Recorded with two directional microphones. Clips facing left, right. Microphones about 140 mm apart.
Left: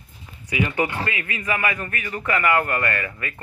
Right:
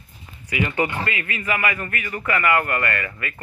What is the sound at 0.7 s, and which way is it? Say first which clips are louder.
Speech: right 1 dB; 15° left (ahead or behind).